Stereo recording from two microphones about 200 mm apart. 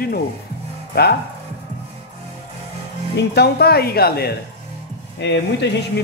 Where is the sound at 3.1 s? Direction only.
55° left (ahead or behind).